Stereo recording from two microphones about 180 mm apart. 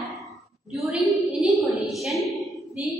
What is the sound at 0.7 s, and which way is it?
A woman's voice, centre (ahead or behind).